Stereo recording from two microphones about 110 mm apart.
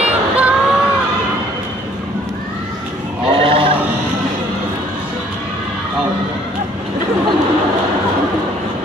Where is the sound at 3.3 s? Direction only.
60° right (ahead or behind).